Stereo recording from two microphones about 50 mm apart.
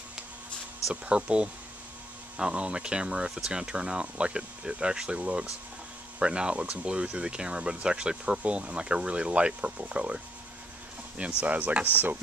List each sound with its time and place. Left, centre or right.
1.0 s speech: right
11.4 s speech: right